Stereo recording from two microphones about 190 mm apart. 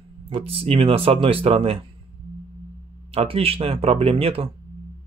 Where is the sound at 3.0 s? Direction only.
30° right (ahead or behind).